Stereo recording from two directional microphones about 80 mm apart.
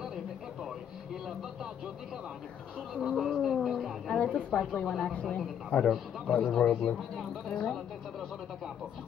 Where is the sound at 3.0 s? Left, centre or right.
Centre.